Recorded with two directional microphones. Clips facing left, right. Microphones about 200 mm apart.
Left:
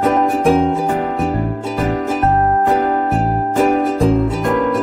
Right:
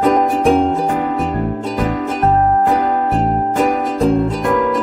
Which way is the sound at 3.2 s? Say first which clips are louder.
Even; centre (ahead or behind).